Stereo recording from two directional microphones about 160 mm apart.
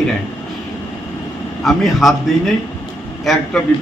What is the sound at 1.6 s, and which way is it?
Speech, centre (ahead or behind).